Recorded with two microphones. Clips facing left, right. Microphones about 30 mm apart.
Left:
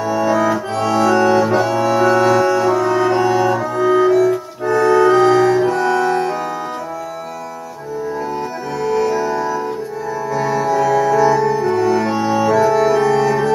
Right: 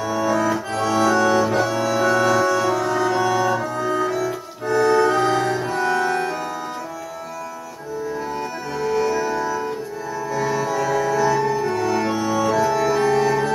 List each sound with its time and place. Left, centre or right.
0.0 s accordion: centre
0.7 s accordion: left
1.8 s music: centre
3.5 s cello: centre
4.1 s organ: centre
4.6 s organ: left
5.7 s organ: left
9.0 s music: centre
12.1 s music: left
12.6 s music: centre
13.1 s music: left